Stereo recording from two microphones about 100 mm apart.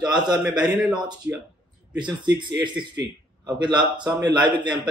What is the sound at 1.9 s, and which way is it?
Speech, 50° right (ahead or behind).